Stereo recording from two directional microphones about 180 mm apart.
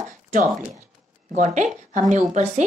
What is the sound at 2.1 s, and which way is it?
Speech, 40° right (ahead or behind).